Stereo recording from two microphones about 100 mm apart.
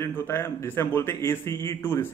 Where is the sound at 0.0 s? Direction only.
25° left (ahead or behind).